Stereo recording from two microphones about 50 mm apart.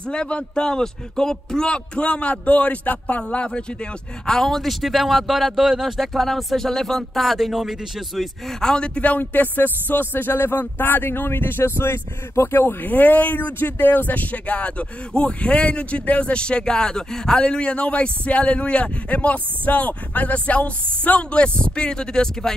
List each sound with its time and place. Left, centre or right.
0.1 s speech: left
3.3 s speech: left
4.3 s speech: centre
8.2 s speech: centre
9.2 s speech: left; by 22.5 s centre